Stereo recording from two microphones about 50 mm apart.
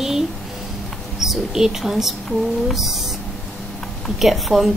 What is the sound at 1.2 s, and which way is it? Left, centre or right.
A woman's voice, centre.